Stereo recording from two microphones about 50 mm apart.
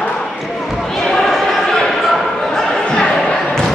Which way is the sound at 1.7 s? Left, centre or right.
Centre.